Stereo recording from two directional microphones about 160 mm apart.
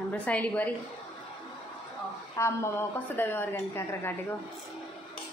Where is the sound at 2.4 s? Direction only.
15° left (ahead or behind).